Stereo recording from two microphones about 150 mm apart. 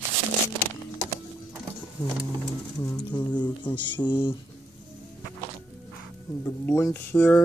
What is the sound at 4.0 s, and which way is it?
Mantra, 30° left (ahead or behind).